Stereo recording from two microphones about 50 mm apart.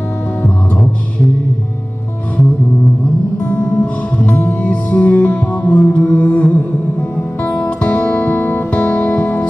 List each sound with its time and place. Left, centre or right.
3.4 s music: left
7.8 s music: left